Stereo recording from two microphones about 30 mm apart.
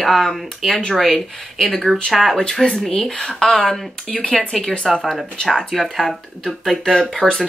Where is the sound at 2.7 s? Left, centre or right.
Left.